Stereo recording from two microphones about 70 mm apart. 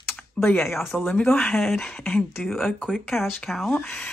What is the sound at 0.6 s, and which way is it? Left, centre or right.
Speech, centre.